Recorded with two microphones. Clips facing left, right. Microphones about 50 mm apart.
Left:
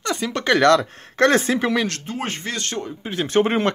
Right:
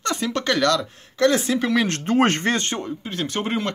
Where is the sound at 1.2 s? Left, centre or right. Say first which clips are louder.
Left 2 dB; left.